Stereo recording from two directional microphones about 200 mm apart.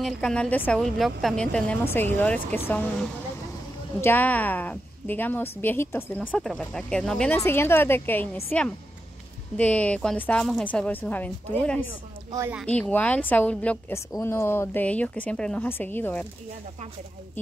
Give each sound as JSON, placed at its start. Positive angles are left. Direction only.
{"t": 0.0, "sound": "a woman's voice", "side_deg": 5}
{"t": 4.0, "sound": "a woman's voice", "side_deg": 10}
{"t": 12.3, "sound": "speech", "side_deg": -15}
{"t": 12.5, "sound": "a woman's voice", "side_deg": 5}